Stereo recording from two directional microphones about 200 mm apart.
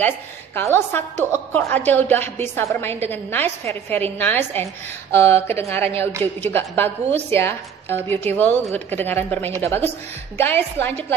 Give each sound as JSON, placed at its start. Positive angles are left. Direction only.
{"t": 0.6, "sound": "a woman's voice", "side_deg": 10}